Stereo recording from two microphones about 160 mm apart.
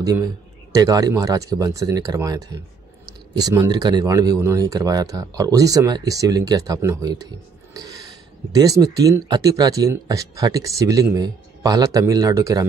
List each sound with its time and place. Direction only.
0.0 s a man's voice: 25° right (ahead or behind)
3.6 s speech: 25° right (ahead or behind)
7.7 s a sound: 25° right (ahead or behind)
8.5 s speech: 20° right (ahead or behind)